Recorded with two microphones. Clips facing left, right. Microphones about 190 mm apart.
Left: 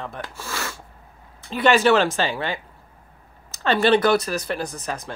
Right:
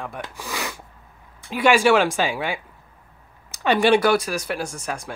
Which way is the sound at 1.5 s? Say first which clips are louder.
Even; 10° right (ahead or behind).